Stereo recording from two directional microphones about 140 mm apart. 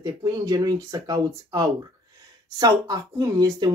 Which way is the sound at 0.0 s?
25° right (ahead or behind).